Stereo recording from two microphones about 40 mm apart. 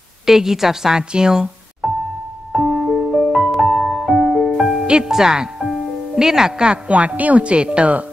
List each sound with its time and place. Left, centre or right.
0.3 s speech: centre
2.5 s music: centre
5.0 s speech: centre
6.9 s speech: right
7.4 s speech: right